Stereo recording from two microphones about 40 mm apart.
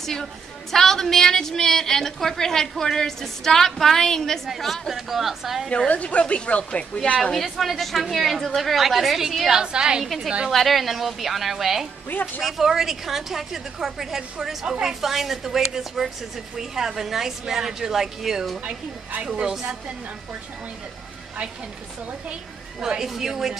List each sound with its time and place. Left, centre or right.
0.0 s a woman's voice: centre
4.5 s a woman's voice: centre
5.9 s speech: left
7.3 s a woman's voice: centre
9.6 s a woman's voice: right
10.0 s a woman's voice: centre
22.8 s a woman's voice: centre